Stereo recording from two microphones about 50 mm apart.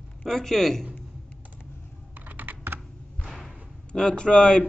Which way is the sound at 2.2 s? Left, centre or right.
Right.